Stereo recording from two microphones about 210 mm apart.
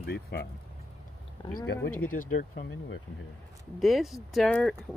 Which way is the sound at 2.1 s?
40° left (ahead or behind).